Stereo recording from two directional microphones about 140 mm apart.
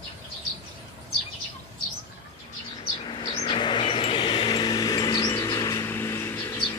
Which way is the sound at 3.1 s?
40° left (ahead or behind).